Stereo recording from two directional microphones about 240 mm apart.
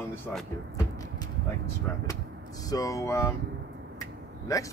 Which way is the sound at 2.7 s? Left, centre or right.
Centre.